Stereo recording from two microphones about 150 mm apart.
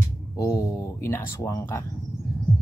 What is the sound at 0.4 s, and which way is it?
Speech, 20° left (ahead or behind).